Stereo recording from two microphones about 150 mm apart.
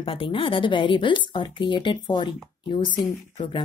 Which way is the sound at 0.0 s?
35° left (ahead or behind).